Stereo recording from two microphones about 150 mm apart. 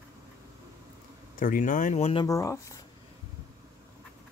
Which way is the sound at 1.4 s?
60° left (ahead or behind).